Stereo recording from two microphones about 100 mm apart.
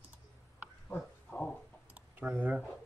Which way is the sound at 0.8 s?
10° left (ahead or behind).